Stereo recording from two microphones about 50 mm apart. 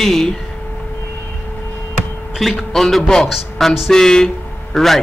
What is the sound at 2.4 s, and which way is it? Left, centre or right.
Speech, centre.